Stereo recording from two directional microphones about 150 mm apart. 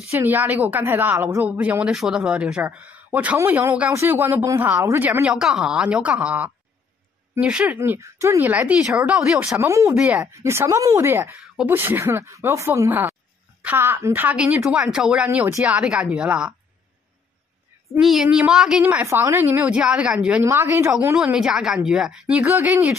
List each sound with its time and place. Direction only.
0.1 s a woman's voice: 15° right (ahead or behind)
5.2 s a woman's voice: 5° right (ahead or behind)
9.9 s a woman's voice: 5° right (ahead or behind)
10.2 s a woman's voice: 20° right (ahead or behind)
15.4 s a woman's voice: 15° right (ahead or behind)
15.8 s a woman's voice: 5° right (ahead or behind)
17.9 s a woman's voice: 5° right (ahead or behind)
20.4 s a woman's voice: 15° right (ahead or behind)